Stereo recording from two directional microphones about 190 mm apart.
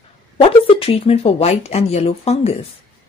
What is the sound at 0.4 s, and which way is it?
Speech, 30° left (ahead or behind).